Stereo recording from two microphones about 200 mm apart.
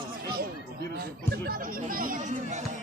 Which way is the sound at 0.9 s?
50° right (ahead or behind).